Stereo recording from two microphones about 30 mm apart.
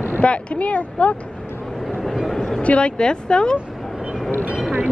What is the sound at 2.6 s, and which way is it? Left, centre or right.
Speech, left.